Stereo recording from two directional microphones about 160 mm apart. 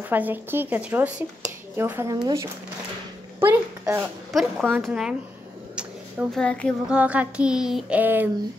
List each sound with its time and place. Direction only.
0.1 s speech: 10° right (ahead or behind)
4.3 s speech: centre (ahead or behind)
6.3 s speech: 5° left (ahead or behind)
6.9 s speech: 10° right (ahead or behind)